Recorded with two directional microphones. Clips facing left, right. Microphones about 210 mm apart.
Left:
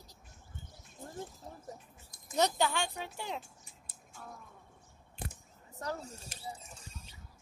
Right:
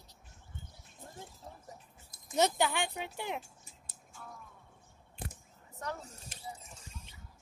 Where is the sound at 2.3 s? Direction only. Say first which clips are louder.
Right 1 dB; 15° right (ahead or behind).